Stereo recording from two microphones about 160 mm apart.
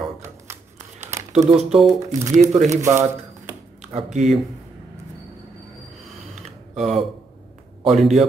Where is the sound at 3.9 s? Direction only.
45° right (ahead or behind).